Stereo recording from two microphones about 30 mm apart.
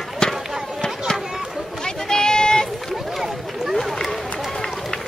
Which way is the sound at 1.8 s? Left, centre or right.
Left.